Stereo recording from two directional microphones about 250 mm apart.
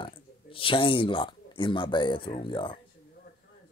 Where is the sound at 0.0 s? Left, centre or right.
Left.